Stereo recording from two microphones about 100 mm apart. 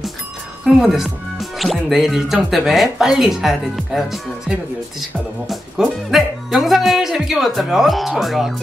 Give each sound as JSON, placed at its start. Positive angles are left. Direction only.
{"t": 0.7, "sound": "speech", "side_deg": -5}